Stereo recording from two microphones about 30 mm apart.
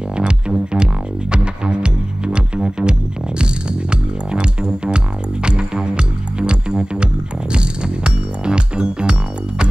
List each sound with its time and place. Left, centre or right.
0.1 s music: right